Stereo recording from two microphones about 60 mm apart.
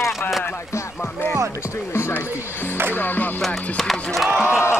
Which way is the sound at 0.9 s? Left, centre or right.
Left.